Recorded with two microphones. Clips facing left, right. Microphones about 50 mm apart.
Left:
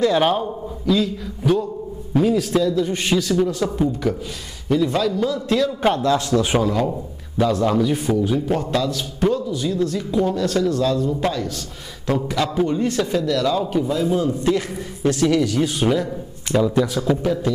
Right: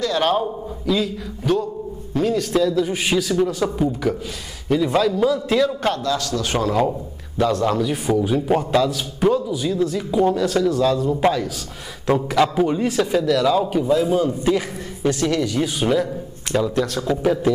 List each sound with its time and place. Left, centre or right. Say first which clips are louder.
0.4 s a man's voice: right 1 dB; centre
2.6 s a man's voice: right 1 dB; centre
5.9 s a man's voice: left 4 dB; left
7.3 s a man's voice: left 1 dB; centre
8.2 s a man's voice: right 1 dB; centre
11.1 s a man's voice: right 4 dB; centre
17.2 s a man's voice: right 2 dB; centre